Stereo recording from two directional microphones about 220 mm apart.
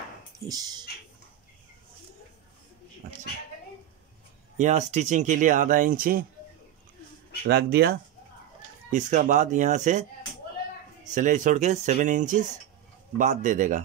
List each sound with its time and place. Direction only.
0.5 s speech: 15° right (ahead or behind)
4.6 s speech: 30° right (ahead or behind)
7.4 s speech: 45° right (ahead or behind)
8.9 s speech: 35° right (ahead or behind)
11.1 s speech: 35° right (ahead or behind)